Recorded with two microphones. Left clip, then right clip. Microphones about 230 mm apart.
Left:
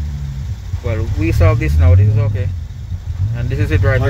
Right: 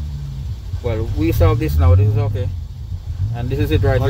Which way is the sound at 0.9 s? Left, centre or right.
Centre.